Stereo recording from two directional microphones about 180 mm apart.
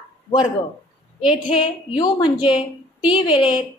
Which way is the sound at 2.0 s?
25° left (ahead or behind).